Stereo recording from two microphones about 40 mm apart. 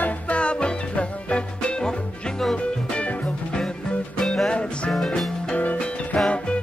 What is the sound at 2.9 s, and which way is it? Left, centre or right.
Music, left.